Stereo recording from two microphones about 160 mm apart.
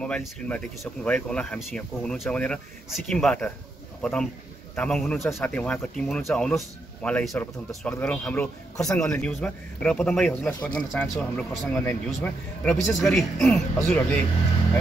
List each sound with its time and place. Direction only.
0.0 s a man's voice: 5° left (ahead or behind)
13.7 s a man's voice: 15° left (ahead or behind)